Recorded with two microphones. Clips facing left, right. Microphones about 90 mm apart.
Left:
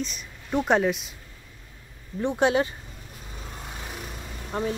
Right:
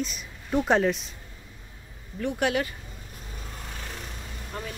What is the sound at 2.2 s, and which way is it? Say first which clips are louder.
Speech: left 4 dB; 25° left (ahead or behind).